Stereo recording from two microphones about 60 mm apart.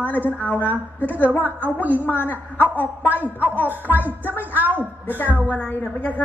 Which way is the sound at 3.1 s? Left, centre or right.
Right.